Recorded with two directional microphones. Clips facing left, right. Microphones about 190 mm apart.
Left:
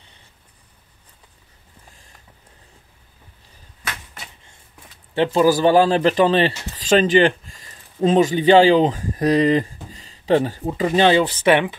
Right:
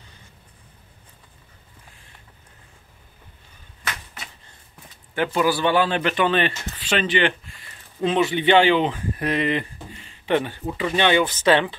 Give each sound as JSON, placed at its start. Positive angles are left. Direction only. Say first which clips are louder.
{"t": 5.1, "sound": "a man's voice", "louder": "left 5 dB", "side_deg": 30}